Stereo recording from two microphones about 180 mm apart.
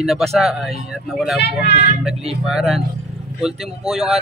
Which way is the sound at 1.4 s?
65° left (ahead or behind).